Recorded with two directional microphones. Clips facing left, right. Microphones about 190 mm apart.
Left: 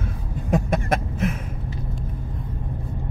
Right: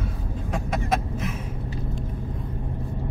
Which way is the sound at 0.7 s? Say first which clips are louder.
Left 2 dB; 55° left (ahead or behind).